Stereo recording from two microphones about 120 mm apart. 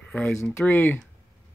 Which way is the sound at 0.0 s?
10° left (ahead or behind).